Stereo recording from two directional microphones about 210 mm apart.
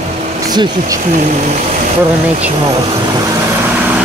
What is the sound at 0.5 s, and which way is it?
Speech, 20° right (ahead or behind).